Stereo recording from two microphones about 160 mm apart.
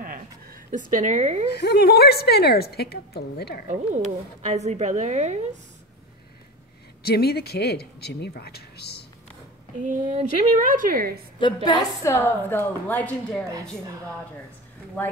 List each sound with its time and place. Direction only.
0.0 s a sound: 65° right (ahead or behind); by 1.5 s 45° right (ahead or behind)
1.5 s a woman's voice: 90° left
3.6 s speech: 45° right (ahead or behind)
7.0 s speech: 80° left
9.8 s a woman's voice: 50° right (ahead or behind); by 11.2 s 65° right (ahead or behind)
11.3 s a woman's voice: 30° left (ahead or behind); by 13.5 s 5° left (ahead or behind)
15.0 s a woman's voice: 10° left (ahead or behind)